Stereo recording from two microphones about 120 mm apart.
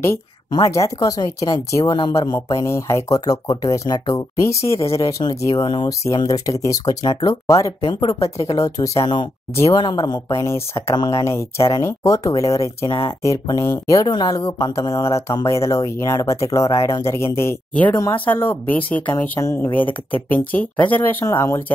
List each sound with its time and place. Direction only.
0.5 s speech: 25° left (ahead or behind)
5.5 s speech: 40° left (ahead or behind)
7.8 s speech: 40° left (ahead or behind)
10.4 s speech: 25° left (ahead or behind)
11.0 s speech: 35° left (ahead or behind)
11.2 s speech: 25° left (ahead or behind)